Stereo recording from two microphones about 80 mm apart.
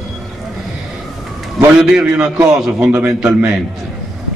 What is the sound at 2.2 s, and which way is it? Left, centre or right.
Speech, right.